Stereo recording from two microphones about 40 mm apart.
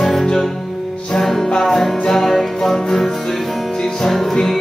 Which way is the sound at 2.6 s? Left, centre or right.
Centre.